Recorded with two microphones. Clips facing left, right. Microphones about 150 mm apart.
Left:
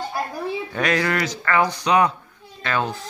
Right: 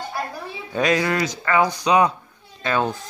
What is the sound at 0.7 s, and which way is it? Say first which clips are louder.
Speech: right 3 dB; 20° right (ahead or behind).